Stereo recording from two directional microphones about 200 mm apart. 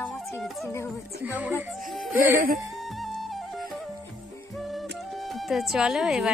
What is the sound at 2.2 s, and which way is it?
Speech, 45° right (ahead or behind).